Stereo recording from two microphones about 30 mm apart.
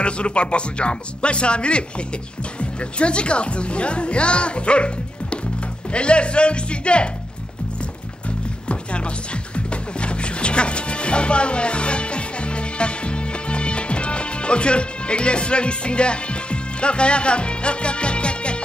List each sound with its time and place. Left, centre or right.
0.0 s speech: left
8.6 s music: left